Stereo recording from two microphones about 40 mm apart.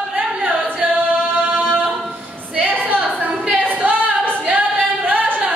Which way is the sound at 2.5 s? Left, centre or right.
Right.